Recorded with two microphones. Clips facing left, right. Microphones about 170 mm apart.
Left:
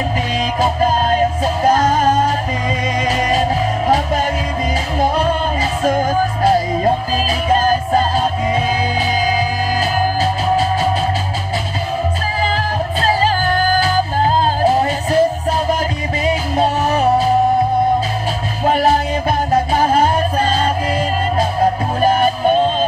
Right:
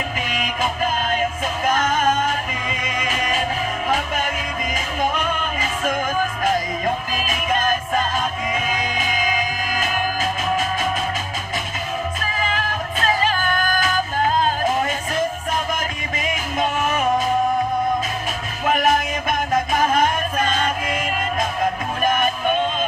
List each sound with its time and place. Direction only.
0.4 s music: 35° left (ahead or behind)
12.4 s music: 35° left (ahead or behind)
16.3 s music: 35° left (ahead or behind)
18.6 s music: 35° left (ahead or behind)